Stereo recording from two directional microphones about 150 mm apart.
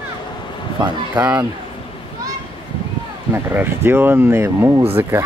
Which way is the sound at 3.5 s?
15° right (ahead or behind).